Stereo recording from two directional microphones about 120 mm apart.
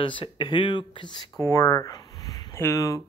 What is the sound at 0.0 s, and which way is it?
Speech, 45° left (ahead or behind).